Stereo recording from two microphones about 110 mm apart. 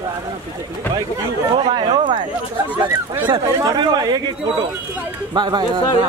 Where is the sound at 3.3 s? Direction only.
40° right (ahead or behind).